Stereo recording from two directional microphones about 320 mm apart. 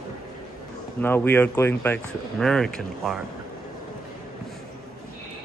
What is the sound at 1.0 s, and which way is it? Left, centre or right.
Speech, centre.